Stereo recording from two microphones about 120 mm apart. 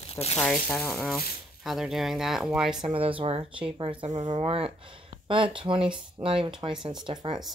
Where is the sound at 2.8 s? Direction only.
50° right (ahead or behind).